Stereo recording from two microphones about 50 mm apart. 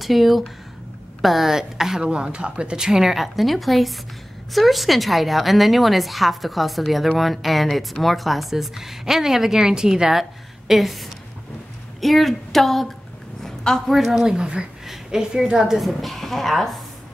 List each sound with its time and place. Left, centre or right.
0.0 s a woman's voice: centre
2.0 s a woman's voice: centre
10.7 s a woman's voice: centre
14.2 s a woman's voice: centre